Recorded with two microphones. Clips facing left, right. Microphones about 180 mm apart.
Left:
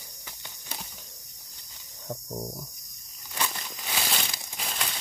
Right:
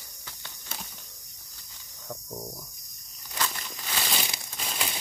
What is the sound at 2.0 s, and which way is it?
Cricket, 20° left (ahead or behind).